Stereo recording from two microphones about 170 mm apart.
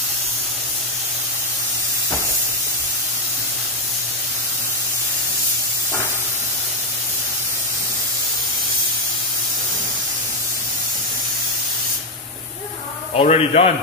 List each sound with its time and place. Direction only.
13.1 s a man's voice: 40° left (ahead or behind)